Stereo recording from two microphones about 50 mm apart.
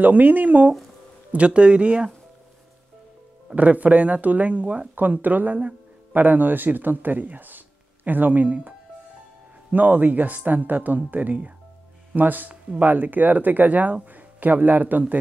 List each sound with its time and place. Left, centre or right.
0.0 s speech: right
3.5 s speech: right
4.9 s speech: right